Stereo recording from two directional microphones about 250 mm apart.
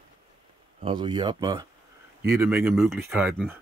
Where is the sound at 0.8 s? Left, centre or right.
Centre.